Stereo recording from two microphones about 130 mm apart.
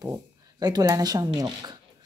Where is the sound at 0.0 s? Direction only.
30° right (ahead or behind).